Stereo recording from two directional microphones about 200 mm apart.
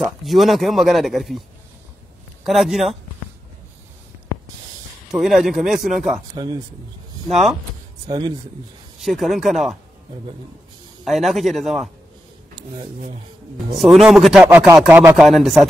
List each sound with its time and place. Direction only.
0.0 s speech: centre (ahead or behind)
2.4 s speech: centre (ahead or behind)
5.1 s speech: centre (ahead or behind)
6.3 s speech: 20° right (ahead or behind)
8.1 s speech: 20° right (ahead or behind)
9.0 s speech: centre (ahead or behind)
11.1 s speech: centre (ahead or behind)
12.7 s speech: 35° right (ahead or behind)
13.7 s speech: centre (ahead or behind)